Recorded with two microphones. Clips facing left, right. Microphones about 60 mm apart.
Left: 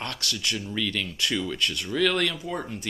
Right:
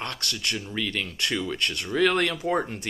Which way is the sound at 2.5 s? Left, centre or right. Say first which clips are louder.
Right 6 dB; right.